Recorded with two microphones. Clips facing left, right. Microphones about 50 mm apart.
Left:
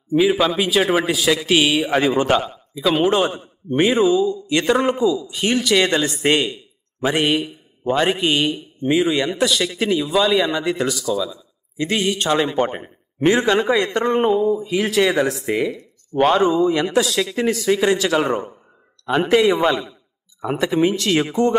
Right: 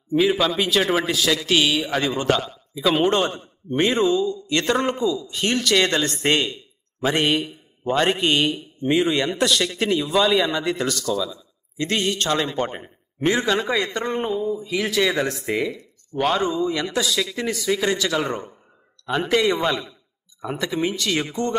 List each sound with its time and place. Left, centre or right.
0.1 s a man's voice: centre; by 2.6 s left
2.7 s a man's voice: centre
16.1 s speech: left
16.7 s a man's voice: centre
17.0 s speech: left
17.4 s speech: left
18.1 s a man's voice: centre
20.9 s speech: left